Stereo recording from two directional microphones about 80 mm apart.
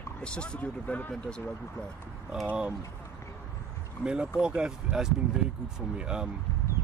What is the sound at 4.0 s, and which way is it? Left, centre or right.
Speech, centre.